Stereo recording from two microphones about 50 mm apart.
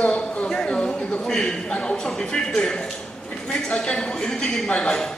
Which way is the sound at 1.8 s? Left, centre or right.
Centre.